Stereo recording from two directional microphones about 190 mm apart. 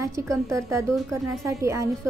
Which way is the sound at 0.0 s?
15° right (ahead or behind).